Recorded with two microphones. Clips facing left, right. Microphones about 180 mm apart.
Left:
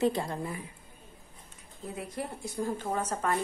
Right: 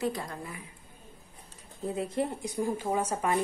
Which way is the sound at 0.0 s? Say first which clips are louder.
Left 4 dB; 25° left (ahead or behind).